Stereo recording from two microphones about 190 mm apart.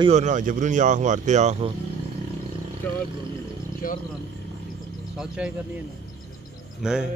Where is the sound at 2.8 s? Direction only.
10° left (ahead or behind).